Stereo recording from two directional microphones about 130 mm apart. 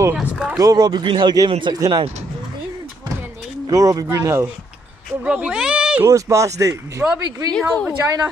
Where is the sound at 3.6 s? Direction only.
25° right (ahead or behind).